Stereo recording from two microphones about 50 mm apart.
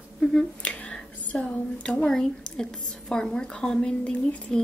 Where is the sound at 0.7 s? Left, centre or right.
Left.